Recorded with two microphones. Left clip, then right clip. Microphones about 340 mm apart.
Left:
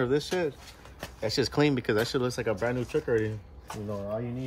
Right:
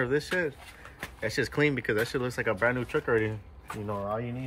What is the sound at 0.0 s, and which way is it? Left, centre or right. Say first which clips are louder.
Speech: even; centre.